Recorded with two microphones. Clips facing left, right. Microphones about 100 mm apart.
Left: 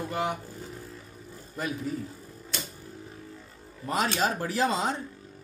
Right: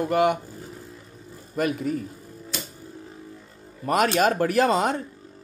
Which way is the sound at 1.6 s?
65° right (ahead or behind).